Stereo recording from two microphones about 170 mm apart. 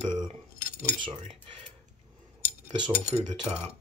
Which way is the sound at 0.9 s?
30° right (ahead or behind).